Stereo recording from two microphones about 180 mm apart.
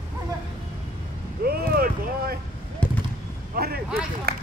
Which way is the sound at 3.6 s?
60° right (ahead or behind).